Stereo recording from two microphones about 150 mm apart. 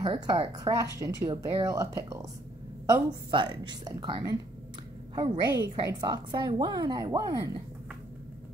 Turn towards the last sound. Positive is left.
turn(degrees=-25)  # may be behind; listen again after turning